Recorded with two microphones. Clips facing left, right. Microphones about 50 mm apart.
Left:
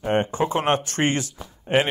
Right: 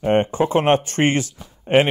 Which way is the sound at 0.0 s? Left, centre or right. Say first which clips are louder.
Right 4 dB; right.